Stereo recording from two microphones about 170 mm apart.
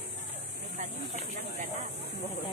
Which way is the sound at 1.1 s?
40° right (ahead or behind).